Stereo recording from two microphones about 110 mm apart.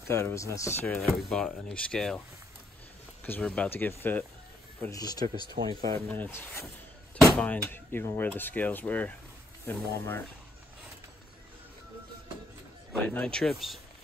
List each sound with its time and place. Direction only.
0.1 s speech: 25° left (ahead or behind)
0.8 s speech: 15° left (ahead or behind)
3.3 s speech: 10° left (ahead or behind)
4.9 s speech: 35° left (ahead or behind)
5.5 s speech: 45° right (ahead or behind)
6.0 s speech: 15° left (ahead or behind)
13.0 s speech: 10° left (ahead or behind)